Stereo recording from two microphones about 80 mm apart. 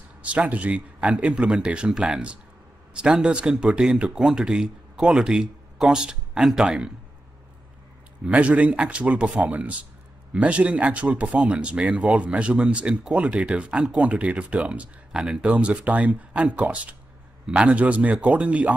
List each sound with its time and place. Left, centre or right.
0.2 s speech: centre
8.3 s speech: centre